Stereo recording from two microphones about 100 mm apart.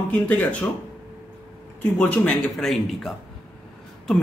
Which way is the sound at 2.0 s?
10° left (ahead or behind).